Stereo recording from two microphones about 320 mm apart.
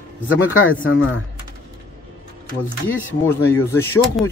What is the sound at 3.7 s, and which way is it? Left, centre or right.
Speech, centre.